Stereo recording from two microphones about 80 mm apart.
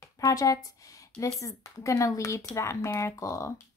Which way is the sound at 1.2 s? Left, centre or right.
Left.